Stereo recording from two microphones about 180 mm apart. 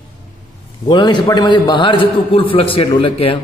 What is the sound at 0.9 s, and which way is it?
A man's voice, 25° left (ahead or behind).